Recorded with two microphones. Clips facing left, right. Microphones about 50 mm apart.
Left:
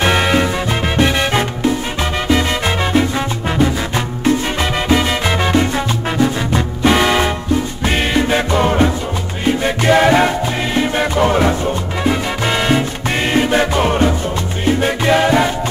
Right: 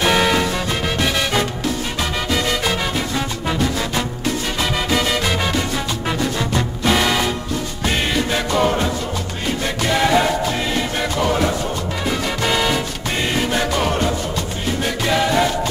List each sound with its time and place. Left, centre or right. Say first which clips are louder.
0.0 s music: left 2 dB; left
4.8 s salsa music: left 5 dB; left
6.5 s music: left 4 dB; left